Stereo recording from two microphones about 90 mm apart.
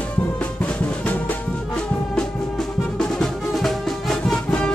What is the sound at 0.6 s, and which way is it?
Music, 20° left (ahead or behind).